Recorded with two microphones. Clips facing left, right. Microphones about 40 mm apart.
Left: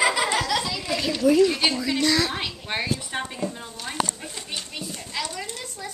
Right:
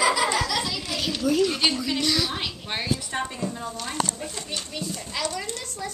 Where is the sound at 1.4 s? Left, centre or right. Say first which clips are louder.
Left 3 dB; centre.